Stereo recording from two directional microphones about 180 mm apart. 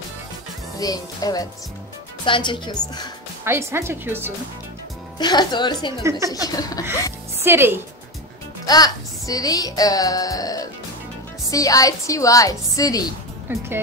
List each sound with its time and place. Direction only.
0.7 s a woman's voice: 20° left (ahead or behind)
3.4 s speech: 15° right (ahead or behind)
5.2 s a woman's voice: 25° left (ahead or behind)
6.0 s speech: 15° right (ahead or behind)
6.3 s a woman's voice: 20° left (ahead or behind)
7.3 s a woman's voice: 15° right (ahead or behind)
8.6 s a woman's voice: 20° left (ahead or behind)
13.5 s speech: 10° right (ahead or behind)